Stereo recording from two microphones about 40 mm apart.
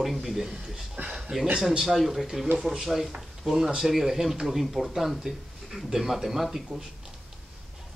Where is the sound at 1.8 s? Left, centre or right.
Centre.